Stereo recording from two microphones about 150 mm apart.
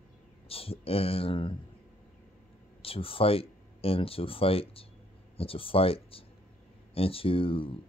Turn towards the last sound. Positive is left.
turn(degrees=35)  # may be behind; listen again after turning